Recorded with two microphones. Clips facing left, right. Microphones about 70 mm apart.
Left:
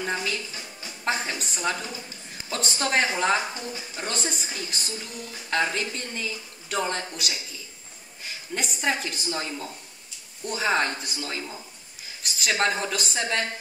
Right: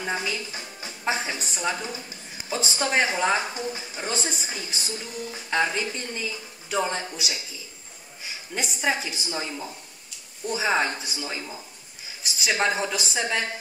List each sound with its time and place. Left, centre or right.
0.0 s speech: centre
0.5 s music: right
1.0 s a woman's voice: centre